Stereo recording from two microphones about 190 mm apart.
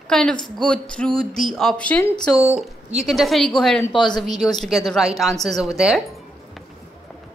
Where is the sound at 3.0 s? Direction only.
Centre (ahead or behind).